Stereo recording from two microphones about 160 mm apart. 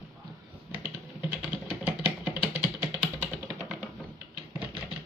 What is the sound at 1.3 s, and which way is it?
Typing, 10° right (ahead or behind).